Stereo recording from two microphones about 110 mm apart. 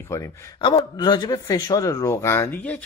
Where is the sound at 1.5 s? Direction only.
30° left (ahead or behind).